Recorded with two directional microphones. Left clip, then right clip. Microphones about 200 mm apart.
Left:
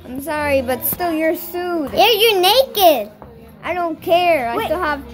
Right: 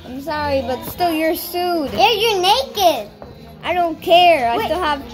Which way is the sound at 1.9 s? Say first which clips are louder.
Left 3 dB; 60° left (ahead or behind).